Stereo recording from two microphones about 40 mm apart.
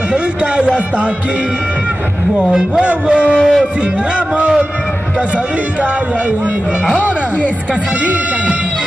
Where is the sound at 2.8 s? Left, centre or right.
Right.